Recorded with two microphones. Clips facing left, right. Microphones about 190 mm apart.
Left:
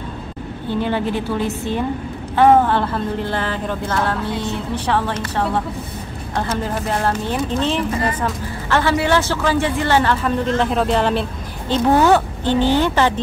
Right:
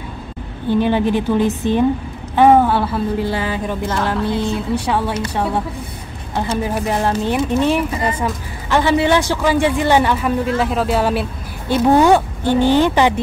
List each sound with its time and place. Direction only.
0.7 s a man's voice: 15° right (ahead or behind)